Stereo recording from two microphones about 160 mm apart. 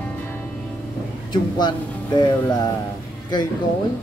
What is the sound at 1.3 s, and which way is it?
Speech, 25° left (ahead or behind).